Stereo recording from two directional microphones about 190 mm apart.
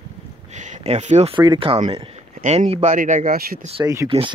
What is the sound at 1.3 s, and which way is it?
Speech, 20° right (ahead or behind).